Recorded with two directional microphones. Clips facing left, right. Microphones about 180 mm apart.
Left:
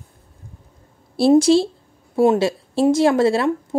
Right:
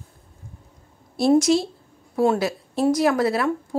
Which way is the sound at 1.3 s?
30° left (ahead or behind).